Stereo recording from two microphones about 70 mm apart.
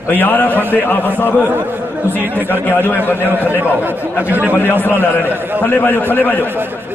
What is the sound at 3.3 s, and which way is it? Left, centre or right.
A man's voice, right.